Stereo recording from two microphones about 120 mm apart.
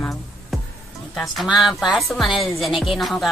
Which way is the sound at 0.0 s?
Centre (ahead or behind).